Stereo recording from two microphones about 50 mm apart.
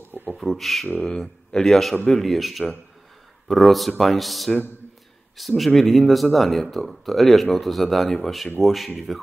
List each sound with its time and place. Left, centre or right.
0.1 s a sound: right
0.4 s speech: centre
0.9 s speech: centre